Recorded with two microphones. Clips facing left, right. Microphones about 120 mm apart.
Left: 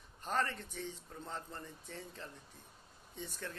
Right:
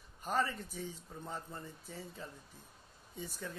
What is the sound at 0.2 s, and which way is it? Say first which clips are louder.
A man's voice: right 2 dB; 5° right (ahead or behind).